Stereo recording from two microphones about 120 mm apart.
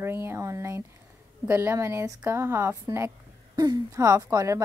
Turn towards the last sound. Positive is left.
turn(degrees=-25)  # may be behind; listen again after turning